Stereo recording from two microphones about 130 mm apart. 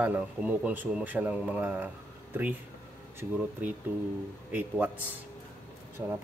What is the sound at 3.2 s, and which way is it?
Speech, 15° right (ahead or behind).